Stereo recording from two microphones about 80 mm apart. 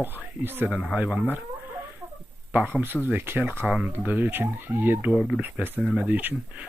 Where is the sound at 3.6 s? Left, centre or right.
Centre.